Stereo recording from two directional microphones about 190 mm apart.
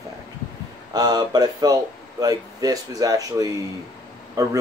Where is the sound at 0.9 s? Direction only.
20° right (ahead or behind).